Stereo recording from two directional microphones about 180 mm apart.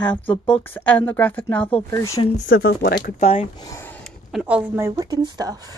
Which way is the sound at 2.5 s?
55° left (ahead or behind).